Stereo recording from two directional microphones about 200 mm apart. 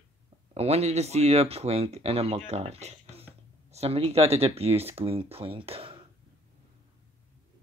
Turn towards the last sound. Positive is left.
turn(degrees=-30)  # may be behind; listen again after turning